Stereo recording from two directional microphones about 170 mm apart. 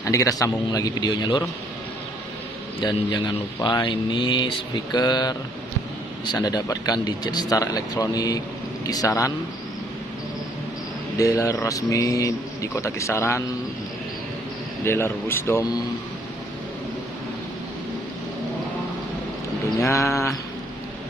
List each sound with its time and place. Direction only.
0.0 s speech: 20° left (ahead or behind)
2.8 s speech: 25° left (ahead or behind)
11.1 s speech: 20° left (ahead or behind)
14.9 s speech: 15° left (ahead or behind)
19.8 s speech: 15° left (ahead or behind)